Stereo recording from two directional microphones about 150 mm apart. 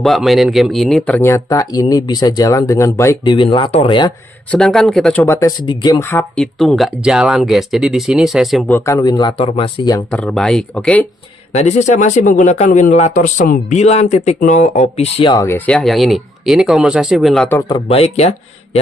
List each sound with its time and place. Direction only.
0.0 s a man's voice: centre (ahead or behind); by 3.2 s 20° left (ahead or behind)
3.3 s speech: 30° left (ahead or behind)
4.5 s speech: 5° left (ahead or behind)
5.2 s a man's voice: 20° left (ahead or behind)
6.0 s speech: 10° left (ahead or behind)
8.6 s a man's voice: 15° left (ahead or behind)
9.4 s speech: 40° left (ahead or behind)
10.1 s speech: 5° left (ahead or behind)
11.5 s speech: 50° left (ahead or behind)
15.4 s speech: 15° left (ahead or behind)
17.6 s speech: 35° left (ahead or behind)